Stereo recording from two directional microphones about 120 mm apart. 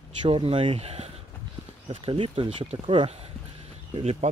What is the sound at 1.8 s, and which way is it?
Speech, 50° right (ahead or behind).